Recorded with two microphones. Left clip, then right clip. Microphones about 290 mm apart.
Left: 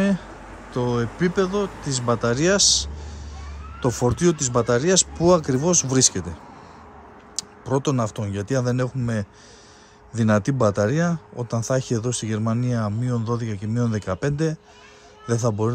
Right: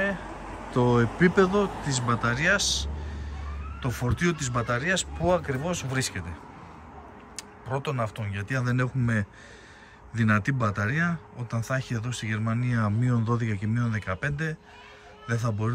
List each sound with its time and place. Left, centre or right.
0.7 s speech: centre
7.3 s speech: left